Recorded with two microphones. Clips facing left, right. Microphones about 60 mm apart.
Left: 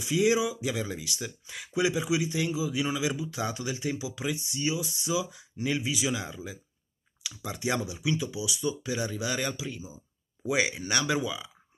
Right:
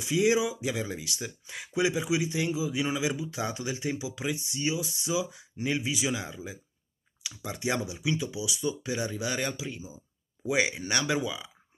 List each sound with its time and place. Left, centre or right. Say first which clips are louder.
0.0 s speech: even; centre